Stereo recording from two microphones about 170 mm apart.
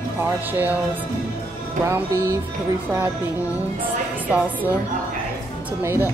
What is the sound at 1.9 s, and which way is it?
Speech, 15° right (ahead or behind).